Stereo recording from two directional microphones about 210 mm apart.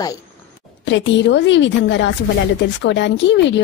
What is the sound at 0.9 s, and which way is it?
A woman's voice, 55° left (ahead or behind).